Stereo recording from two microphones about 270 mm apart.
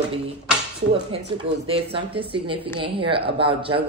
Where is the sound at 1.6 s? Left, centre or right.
Right.